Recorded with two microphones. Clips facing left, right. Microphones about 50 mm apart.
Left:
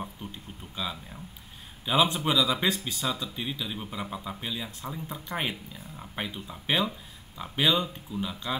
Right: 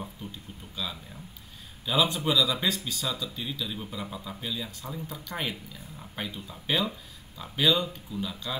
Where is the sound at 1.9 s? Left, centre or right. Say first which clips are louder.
Left 1 dB; left.